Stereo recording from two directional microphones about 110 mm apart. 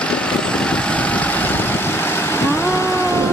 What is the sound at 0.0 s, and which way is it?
Vehicle, 10° left (ahead or behind).